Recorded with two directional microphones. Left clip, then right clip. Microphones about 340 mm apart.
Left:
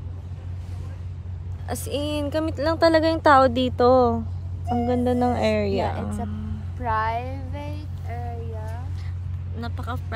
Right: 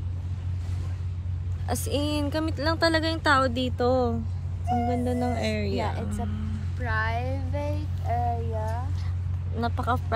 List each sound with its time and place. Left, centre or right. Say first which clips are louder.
1.7 s speech: left 1 dB; centre
8.1 s a sound: right 8 dB; centre
9.6 s speech: right 6 dB; centre